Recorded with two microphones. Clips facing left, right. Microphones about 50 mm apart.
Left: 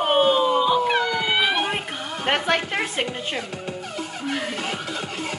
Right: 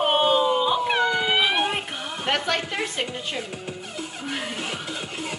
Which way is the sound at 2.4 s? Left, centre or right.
Left.